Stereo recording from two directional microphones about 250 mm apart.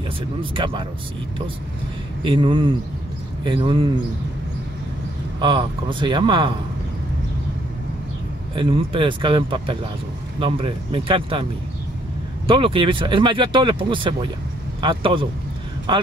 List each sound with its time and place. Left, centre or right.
0.4 s speech: right
2.2 s speech: centre
5.4 s speech: centre
8.5 s speech: centre
12.4 s speech: right